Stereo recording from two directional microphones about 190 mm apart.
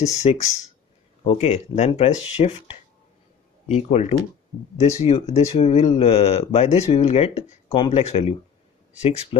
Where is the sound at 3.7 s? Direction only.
35° left (ahead or behind).